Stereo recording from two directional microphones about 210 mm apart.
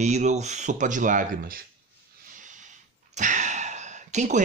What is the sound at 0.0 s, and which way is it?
Speech, 35° right (ahead or behind).